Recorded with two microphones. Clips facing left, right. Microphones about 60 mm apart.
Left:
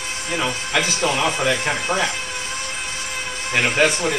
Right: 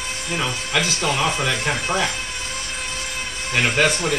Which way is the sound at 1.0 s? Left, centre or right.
Centre.